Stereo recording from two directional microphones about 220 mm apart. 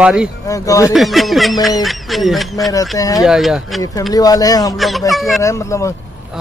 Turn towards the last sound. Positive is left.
turn(degrees=15)  # may be behind; listen again after turning